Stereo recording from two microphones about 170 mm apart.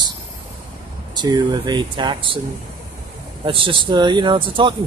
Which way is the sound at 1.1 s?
25° right (ahead or behind).